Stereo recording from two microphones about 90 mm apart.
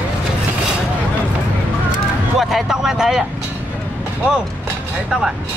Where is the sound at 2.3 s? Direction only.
5° right (ahead or behind).